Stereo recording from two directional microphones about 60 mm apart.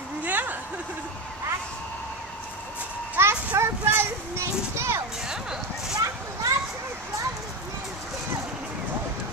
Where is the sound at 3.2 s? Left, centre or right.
Right.